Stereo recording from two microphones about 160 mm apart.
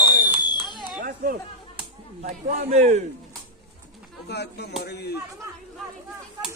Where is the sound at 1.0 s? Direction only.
65° right (ahead or behind).